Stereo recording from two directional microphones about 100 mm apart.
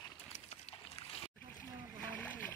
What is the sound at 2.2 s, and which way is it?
Boat, 15° left (ahead or behind).